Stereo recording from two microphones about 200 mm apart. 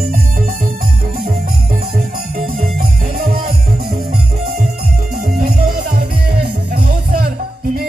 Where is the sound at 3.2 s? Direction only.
45° right (ahead or behind).